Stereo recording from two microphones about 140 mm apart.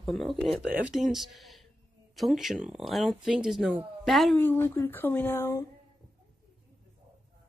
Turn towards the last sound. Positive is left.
turn(degrees=20)  # may be behind; listen again after turning